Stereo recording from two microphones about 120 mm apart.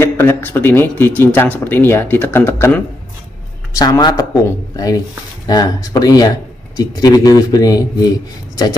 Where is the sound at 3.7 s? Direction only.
30° left (ahead or behind).